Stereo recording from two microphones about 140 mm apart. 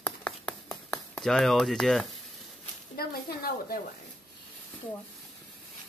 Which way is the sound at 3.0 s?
90° left.